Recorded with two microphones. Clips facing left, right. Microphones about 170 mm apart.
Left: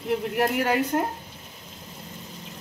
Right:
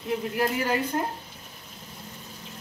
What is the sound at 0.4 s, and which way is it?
Speech, 65° left (ahead or behind).